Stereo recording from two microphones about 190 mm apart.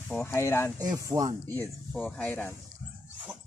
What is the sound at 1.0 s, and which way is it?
Speech, 15° right (ahead or behind).